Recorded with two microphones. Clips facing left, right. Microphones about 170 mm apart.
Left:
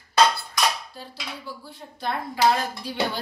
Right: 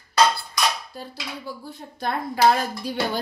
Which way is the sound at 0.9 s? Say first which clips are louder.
Right 4 dB; 45° right (ahead or behind).